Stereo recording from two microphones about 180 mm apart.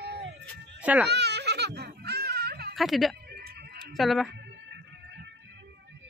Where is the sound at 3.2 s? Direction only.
60° right (ahead or behind).